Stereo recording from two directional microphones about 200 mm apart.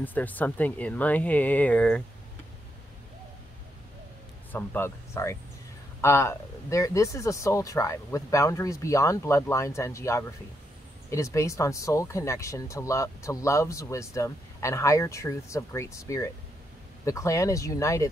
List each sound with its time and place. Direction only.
0.0 s speech: 10° left (ahead or behind)
4.5 s speech: 10° left (ahead or behind)